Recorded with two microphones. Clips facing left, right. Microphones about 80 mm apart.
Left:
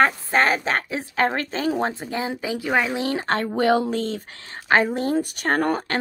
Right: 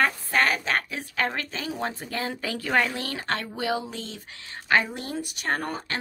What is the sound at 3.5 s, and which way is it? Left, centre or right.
Speech, left.